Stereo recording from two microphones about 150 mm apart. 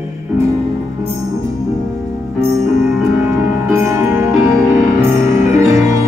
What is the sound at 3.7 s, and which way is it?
Music, 15° right (ahead or behind).